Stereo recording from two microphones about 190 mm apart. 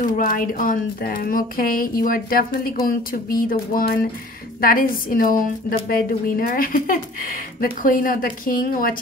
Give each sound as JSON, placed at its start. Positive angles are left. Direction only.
{"t": 0.0, "sound": "a woman's voice", "side_deg": 45}